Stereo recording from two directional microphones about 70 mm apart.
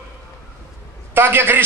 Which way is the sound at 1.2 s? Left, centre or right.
Right.